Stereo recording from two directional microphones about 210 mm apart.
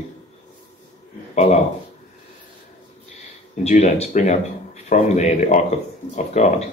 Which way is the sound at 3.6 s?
30° left (ahead or behind).